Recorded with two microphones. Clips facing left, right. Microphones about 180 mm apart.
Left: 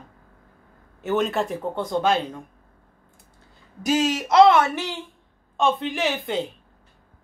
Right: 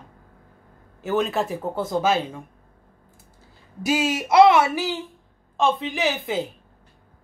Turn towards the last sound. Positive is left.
turn(degrees=0)  # may be behind; listen again after turning